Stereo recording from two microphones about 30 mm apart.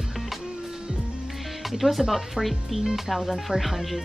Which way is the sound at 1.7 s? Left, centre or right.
Centre.